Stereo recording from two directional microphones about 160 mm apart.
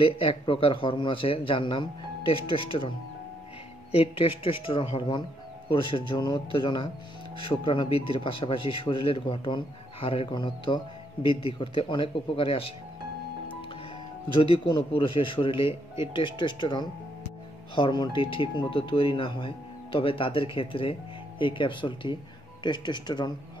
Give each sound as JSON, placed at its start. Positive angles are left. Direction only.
{"t": 0.0, "sound": "speech", "side_deg": 35}
{"t": 3.9, "sound": "speech", "side_deg": 35}
{"t": 14.3, "sound": "speech", "side_deg": 30}